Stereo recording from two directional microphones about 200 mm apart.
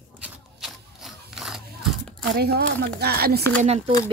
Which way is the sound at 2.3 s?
50° right (ahead or behind).